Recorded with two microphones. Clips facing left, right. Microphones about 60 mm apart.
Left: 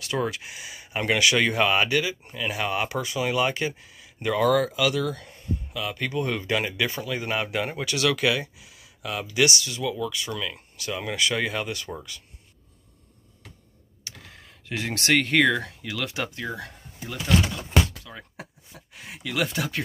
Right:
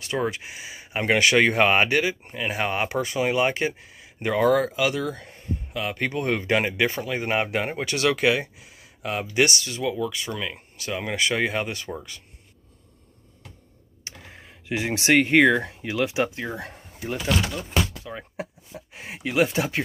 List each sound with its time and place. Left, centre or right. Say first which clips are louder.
0.0 s speech: right 1 dB; right
14.0 s speech: right 2 dB; right
18.0 s speech: right 7 dB; right